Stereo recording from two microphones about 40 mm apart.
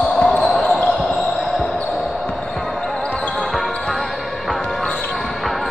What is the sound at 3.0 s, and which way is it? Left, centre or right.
Basketball bounce, left.